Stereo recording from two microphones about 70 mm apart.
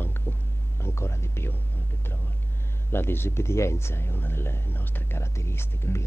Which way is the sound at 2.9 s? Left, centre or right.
Left.